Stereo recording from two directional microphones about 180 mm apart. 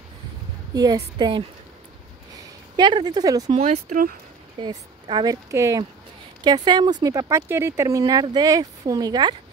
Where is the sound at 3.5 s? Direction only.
35° right (ahead or behind).